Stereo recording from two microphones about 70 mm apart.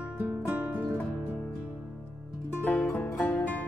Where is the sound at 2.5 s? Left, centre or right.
Left.